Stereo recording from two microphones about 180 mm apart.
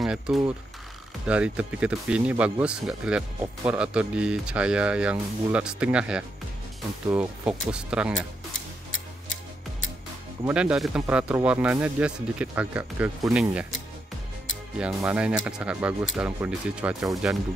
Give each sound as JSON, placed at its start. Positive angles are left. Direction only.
{"t": 0.0, "sound": "speech", "side_deg": 0}
{"t": 10.4, "sound": "speech", "side_deg": -5}
{"t": 14.9, "sound": "speech", "side_deg": -15}
{"t": 15.1, "sound": "speech", "side_deg": -5}